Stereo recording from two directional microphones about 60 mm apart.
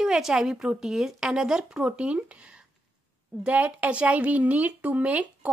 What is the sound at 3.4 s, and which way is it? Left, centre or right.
Speech, right.